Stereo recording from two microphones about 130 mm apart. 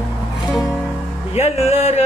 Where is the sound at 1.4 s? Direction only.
50° left (ahead or behind).